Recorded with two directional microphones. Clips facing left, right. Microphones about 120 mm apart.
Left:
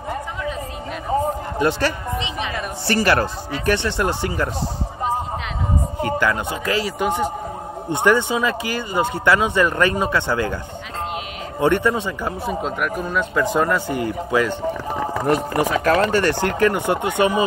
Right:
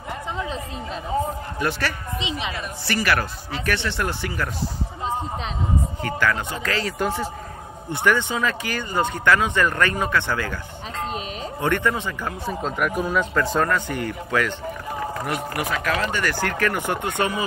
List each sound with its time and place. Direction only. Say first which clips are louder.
1.6 s speech: left 6 dB; 20° left (ahead or behind)
2.1 s a woman's voice: left 2 dB; 20° right (ahead or behind)
2.9 s speech: left 5 dB; 30° left (ahead or behind)
5.9 s speech: left 5 dB; 20° left (ahead or behind)
11.6 s speech: left 5 dB; 15° left (ahead or behind)
12.4 s speech: even; centre (ahead or behind)
13.6 s speech: left 3 dB; 15° left (ahead or behind)
15.2 s speech: left 11 dB; 35° left (ahead or behind)